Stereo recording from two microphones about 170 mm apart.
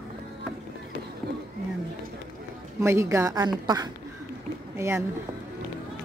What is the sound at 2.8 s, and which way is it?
A woman's voice, 15° right (ahead or behind).